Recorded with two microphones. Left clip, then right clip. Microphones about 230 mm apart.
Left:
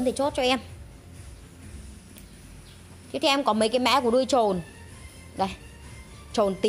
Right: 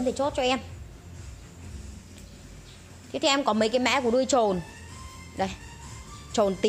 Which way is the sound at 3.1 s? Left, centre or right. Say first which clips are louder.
Left 1 dB; left.